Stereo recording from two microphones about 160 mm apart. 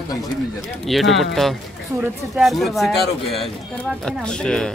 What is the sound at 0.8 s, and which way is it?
Speech, centre (ahead or behind).